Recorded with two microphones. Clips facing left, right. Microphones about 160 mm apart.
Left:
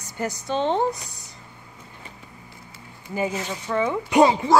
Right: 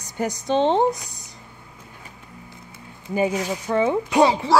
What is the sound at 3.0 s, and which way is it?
Speech, 15° right (ahead or behind).